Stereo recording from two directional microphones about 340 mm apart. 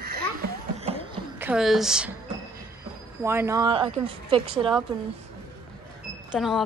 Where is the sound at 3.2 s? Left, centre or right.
Centre.